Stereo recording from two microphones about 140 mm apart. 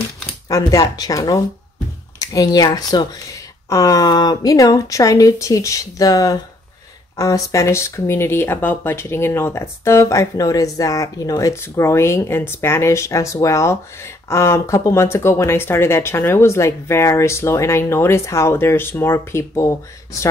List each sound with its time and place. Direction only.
0.5 s speech: 25° left (ahead or behind)